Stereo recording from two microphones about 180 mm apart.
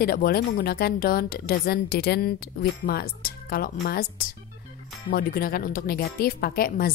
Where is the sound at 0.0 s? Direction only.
55° left (ahead or behind).